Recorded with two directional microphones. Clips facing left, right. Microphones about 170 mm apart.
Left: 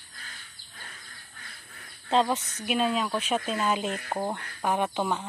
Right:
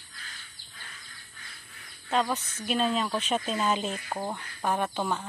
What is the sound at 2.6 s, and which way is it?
Speech, 10° left (ahead or behind).